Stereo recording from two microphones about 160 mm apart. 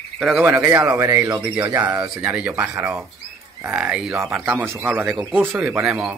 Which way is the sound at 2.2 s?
10° right (ahead or behind).